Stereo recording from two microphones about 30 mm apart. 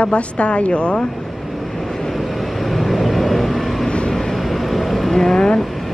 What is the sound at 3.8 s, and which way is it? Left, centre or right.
Vehicle, left.